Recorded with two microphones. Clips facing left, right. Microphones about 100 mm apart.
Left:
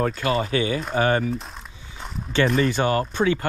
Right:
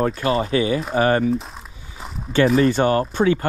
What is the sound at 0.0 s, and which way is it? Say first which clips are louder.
Speech: right 3 dB; 35° right (ahead or behind).